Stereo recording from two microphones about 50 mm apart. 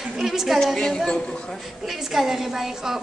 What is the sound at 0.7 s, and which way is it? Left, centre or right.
Speech, centre.